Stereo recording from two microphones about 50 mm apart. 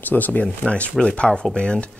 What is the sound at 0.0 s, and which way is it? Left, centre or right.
Speech, left.